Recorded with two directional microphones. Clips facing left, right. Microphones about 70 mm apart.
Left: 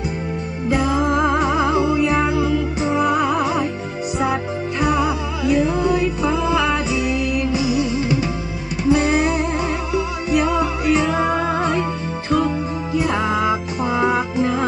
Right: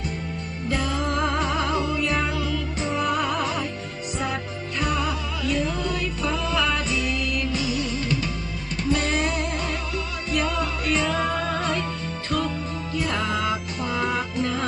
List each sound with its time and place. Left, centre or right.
0.7 s music: centre